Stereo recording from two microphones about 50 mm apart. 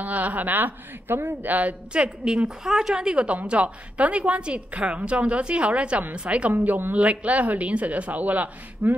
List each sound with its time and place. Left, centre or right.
0.0 s a woman's voice: right
2.2 s a woman's voice: centre
6.5 s a woman's voice: right